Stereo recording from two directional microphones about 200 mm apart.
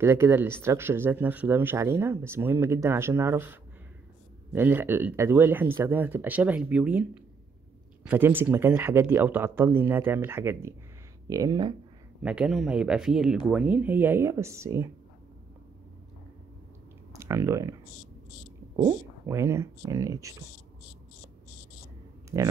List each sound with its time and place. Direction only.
0.0 s speech: 10° right (ahead or behind)
8.1 s speech: 10° right (ahead or behind)
12.2 s speech: 5° right (ahead or behind)
17.1 s speech: 15° right (ahead or behind)
18.8 s speech: 15° right (ahead or behind)
22.3 s speech: 20° right (ahead or behind)